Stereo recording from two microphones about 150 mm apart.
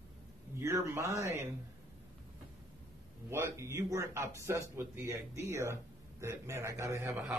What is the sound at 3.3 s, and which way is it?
Speech, 20° right (ahead or behind).